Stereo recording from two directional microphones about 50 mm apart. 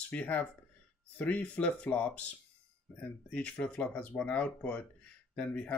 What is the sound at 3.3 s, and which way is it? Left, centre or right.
Speech, left.